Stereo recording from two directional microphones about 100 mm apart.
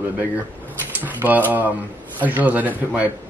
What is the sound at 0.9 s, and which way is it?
Speech, 15° right (ahead or behind).